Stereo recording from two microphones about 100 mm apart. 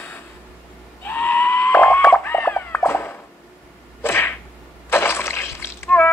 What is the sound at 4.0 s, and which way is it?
Sneeze, 25° left (ahead or behind).